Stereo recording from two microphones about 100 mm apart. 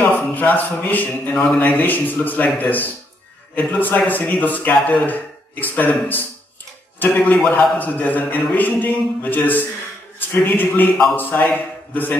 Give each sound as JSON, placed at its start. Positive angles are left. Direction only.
{"t": 0.0, "sound": "a man's voice", "side_deg": 15}
{"t": 7.0, "sound": "a man's voice", "side_deg": 15}